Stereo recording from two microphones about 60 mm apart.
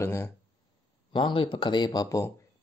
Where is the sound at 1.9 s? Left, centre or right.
Left.